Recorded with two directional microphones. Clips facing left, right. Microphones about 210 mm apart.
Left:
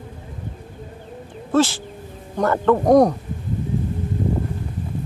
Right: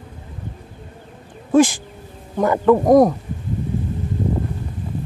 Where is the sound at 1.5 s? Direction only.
15° right (ahead or behind).